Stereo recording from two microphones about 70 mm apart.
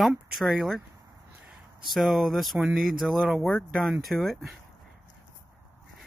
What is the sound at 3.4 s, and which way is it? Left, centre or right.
Speech, centre.